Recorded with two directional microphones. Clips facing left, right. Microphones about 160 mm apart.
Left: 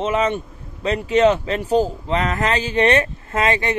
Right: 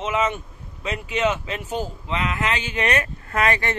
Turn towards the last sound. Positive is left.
turn(degrees=20)  # may be behind; listen again after turning